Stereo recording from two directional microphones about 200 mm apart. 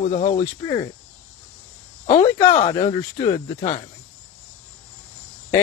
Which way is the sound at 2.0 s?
30° left (ahead or behind).